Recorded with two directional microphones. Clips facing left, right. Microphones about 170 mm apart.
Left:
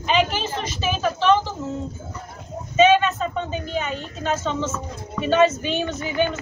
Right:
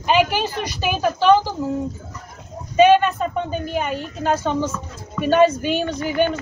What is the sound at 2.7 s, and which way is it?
Speech, 15° right (ahead or behind).